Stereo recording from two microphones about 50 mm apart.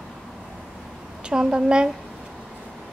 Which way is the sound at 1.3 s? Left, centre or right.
Centre.